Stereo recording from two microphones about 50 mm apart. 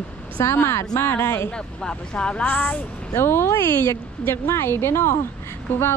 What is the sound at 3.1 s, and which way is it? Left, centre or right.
Speech, left.